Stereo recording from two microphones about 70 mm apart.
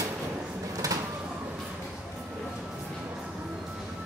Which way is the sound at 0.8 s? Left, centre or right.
Right.